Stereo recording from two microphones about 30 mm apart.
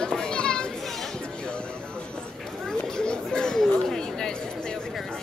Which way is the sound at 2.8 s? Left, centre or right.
Left.